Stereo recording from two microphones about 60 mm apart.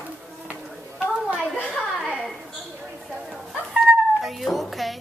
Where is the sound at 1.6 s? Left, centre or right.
Centre.